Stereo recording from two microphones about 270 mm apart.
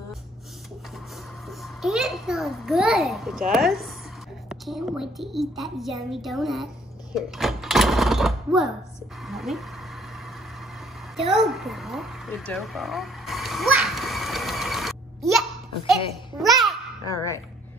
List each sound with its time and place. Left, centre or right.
1.6 s a child's voice: centre
7.2 s a sound: centre
9.2 s a child's voice: centre
11.1 s a sound: centre
15.9 s babbling: centre
17.1 s dog: centre